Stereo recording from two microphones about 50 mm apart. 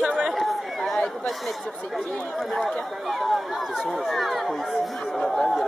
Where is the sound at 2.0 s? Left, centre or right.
Centre.